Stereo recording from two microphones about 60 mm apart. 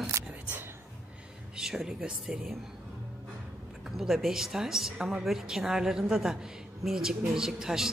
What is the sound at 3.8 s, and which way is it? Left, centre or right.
A woman's voice, centre.